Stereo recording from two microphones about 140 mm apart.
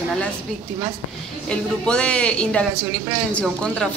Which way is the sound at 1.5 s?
5° left (ahead or behind).